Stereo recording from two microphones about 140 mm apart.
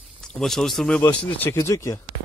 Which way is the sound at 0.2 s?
5° left (ahead or behind).